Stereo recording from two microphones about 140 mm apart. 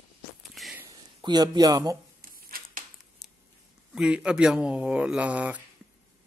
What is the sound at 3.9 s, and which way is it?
Speech, 5° right (ahead or behind).